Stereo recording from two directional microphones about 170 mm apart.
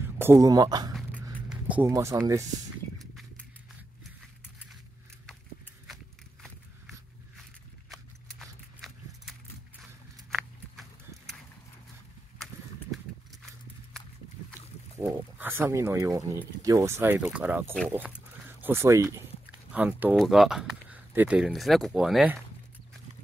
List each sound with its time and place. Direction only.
0.2 s speech: 15° right (ahead or behind)
0.9 s zipper: centre (ahead or behind)
1.9 s speech: 15° right (ahead or behind)
3.0 s a sound: centre (ahead or behind)
7.9 s horse: centre (ahead or behind)
15.0 s speech: 15° right (ahead or behind)